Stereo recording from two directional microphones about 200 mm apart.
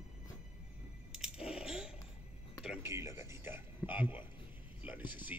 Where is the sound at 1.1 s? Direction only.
Centre (ahead or behind).